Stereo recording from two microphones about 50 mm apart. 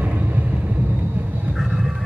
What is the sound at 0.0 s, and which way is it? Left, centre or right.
Vehicle, right.